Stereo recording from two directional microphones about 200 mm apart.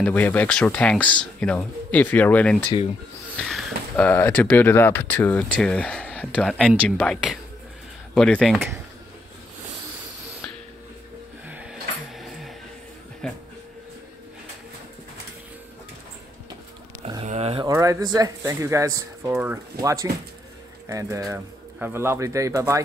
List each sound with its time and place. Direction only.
0.0 s speech: 10° left (ahead or behind)
11.4 s music: 5° right (ahead or behind)
13.2 s speech: 5° left (ahead or behind)
17.0 s a sound: 30° right (ahead or behind)
17.6 s speech: 15° right (ahead or behind)